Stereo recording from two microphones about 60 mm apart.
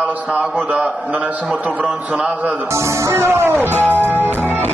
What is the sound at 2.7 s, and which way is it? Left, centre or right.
Music, right.